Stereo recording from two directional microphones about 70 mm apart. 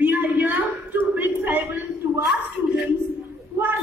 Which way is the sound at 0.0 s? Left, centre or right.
Right.